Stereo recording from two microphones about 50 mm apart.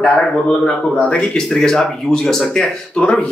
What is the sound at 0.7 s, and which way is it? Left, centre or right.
Speech, centre.